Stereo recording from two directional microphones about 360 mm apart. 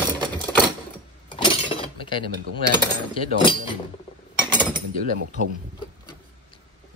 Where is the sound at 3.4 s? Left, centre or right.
Centre.